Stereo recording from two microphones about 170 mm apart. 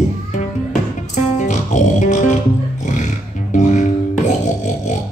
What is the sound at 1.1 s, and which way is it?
Music, 45° left (ahead or behind).